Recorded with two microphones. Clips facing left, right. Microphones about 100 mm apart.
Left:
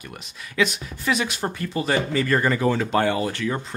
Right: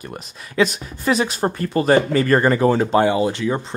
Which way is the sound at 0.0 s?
35° right (ahead or behind).